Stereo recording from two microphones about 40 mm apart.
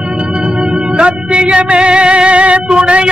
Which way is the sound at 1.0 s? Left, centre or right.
Right.